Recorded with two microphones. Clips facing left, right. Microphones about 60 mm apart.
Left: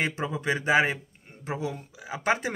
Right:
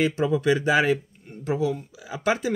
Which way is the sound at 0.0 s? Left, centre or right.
Left.